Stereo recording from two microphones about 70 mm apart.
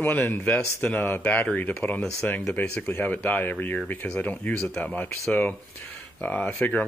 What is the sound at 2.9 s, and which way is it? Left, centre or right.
Speech, left.